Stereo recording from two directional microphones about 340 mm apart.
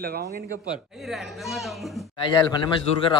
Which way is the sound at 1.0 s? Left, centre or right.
Centre.